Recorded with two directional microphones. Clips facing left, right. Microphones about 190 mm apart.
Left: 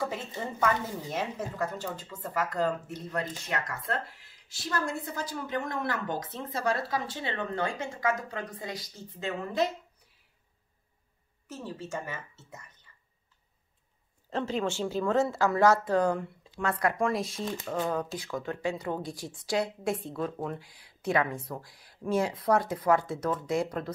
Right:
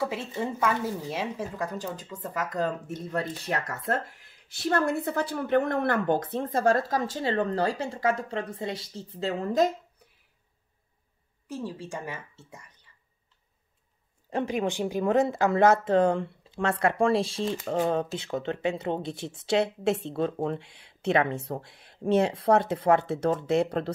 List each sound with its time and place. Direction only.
0.0 s speech: 5° right (ahead or behind); by 9.7 s 40° right (ahead or behind)
11.4 s speech: 15° right (ahead or behind)
14.3 s speech: 15° right (ahead or behind)